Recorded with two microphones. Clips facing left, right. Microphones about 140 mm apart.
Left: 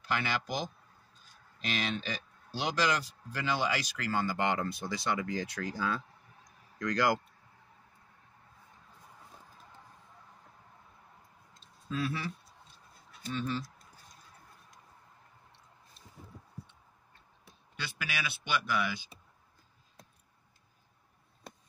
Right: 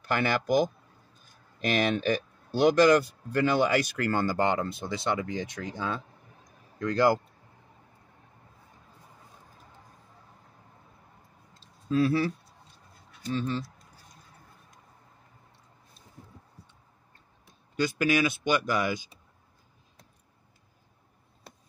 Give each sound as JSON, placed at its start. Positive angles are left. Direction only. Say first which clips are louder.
{"t": 0.0, "sound": "speech", "louder": "right 6 dB", "side_deg": -50}
{"t": 4.5, "sound": "speech", "louder": "right 4 dB", "side_deg": -25}
{"t": 11.9, "sound": "speech", "louder": "right 10 dB", "side_deg": -35}
{"t": 17.7, "sound": "speech", "louder": "right 14 dB", "side_deg": -40}